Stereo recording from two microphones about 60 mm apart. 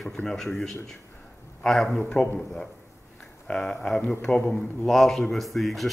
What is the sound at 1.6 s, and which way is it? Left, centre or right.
Speech, centre.